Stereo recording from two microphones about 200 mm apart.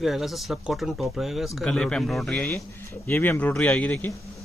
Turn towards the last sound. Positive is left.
turn(degrees=10)  # may be behind; listen again after turning